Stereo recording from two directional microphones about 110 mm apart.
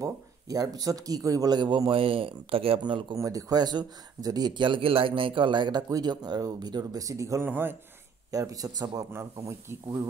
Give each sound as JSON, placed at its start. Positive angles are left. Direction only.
{"t": 0.0, "sound": "speech", "side_deg": -35}
{"t": 2.8, "sound": "speech", "side_deg": -45}
{"t": 3.2, "sound": "speech", "side_deg": -30}
{"t": 8.3, "sound": "speech", "side_deg": -30}